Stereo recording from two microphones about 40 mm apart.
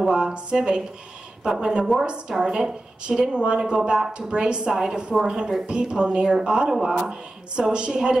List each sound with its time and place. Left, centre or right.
0.1 s a woman's voice: right
7.1 s a woman's voice: right